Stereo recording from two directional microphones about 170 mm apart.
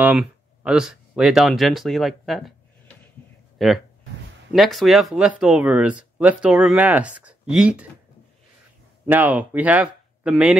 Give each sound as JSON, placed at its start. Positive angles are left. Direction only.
{"t": 0.0, "sound": "speech", "side_deg": -10}
{"t": 3.5, "sound": "speech", "side_deg": 0}
{"t": 9.1, "sound": "speech", "side_deg": -10}